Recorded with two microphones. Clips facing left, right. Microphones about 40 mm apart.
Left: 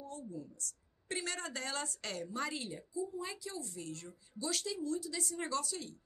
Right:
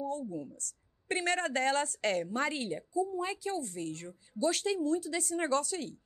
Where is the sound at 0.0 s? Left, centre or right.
Right.